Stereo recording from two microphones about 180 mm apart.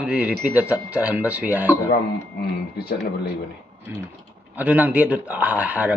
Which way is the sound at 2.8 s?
65° left (ahead or behind).